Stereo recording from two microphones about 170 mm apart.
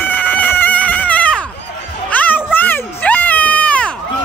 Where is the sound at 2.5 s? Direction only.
10° left (ahead or behind).